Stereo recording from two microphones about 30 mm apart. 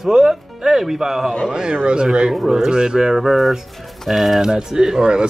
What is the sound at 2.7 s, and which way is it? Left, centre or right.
Speech, right.